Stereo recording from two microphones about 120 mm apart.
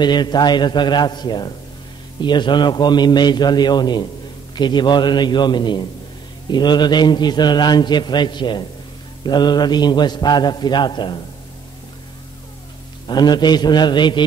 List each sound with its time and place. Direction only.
0.0 s a man's voice: 35° left (ahead or behind)
13.0 s a man's voice: 35° left (ahead or behind)